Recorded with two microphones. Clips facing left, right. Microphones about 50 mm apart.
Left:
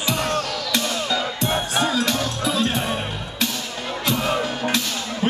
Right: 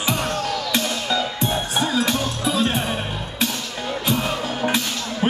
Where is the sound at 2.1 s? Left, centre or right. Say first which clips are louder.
Right 1 dB; centre.